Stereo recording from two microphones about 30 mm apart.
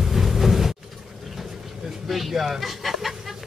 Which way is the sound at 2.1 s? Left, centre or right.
Centre.